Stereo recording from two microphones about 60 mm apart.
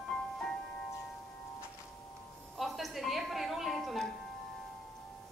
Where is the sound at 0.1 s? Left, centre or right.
Centre.